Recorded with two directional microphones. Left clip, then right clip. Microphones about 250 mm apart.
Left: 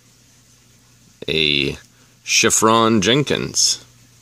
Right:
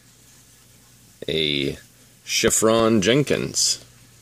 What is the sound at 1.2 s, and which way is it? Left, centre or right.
Speech, left.